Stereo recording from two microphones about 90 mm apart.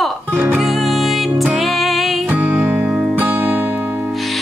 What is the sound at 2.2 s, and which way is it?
Music, 15° right (ahead or behind).